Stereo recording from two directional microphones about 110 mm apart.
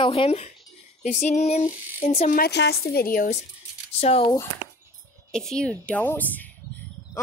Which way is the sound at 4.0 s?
65° left (ahead or behind).